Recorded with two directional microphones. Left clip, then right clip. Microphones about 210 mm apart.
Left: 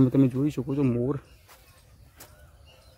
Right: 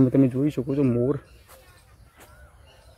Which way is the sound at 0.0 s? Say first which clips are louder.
Right 2 dB; centre (ahead or behind).